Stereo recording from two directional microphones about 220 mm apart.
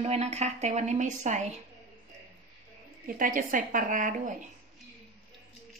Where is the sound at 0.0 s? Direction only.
30° right (ahead or behind).